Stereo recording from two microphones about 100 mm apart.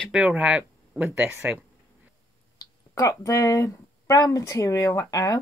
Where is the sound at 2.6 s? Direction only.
30° left (ahead or behind).